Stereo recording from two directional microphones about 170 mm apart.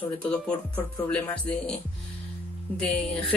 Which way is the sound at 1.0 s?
5° left (ahead or behind).